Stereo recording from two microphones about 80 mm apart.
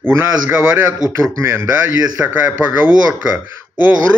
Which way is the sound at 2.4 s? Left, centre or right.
Right.